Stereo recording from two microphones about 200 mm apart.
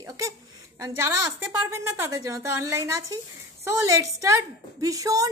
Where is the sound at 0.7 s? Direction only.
15° right (ahead or behind).